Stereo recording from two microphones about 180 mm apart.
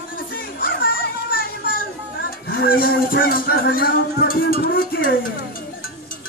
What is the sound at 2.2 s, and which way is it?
Speech, 55° left (ahead or behind).